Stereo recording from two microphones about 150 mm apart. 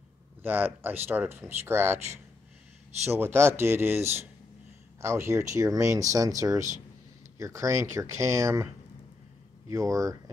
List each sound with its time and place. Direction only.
0.4 s speech: 10° right (ahead or behind)
9.7 s speech: 20° right (ahead or behind)